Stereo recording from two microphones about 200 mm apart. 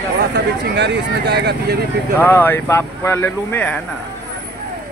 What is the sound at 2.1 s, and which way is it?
Speech, 10° left (ahead or behind).